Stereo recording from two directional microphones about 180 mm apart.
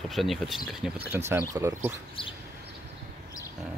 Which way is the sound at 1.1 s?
10° right (ahead or behind).